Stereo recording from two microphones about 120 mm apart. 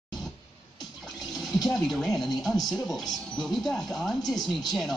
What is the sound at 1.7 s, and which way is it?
Speech, 5° left (ahead or behind).